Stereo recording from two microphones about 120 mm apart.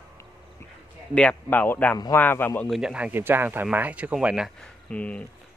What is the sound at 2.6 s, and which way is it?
Speech, 5° right (ahead or behind).